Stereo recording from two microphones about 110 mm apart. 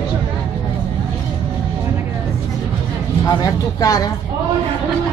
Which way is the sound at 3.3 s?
35° left (ahead or behind).